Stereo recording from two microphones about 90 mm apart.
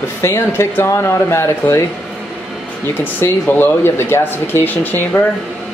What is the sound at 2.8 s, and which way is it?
Speech, 20° left (ahead or behind).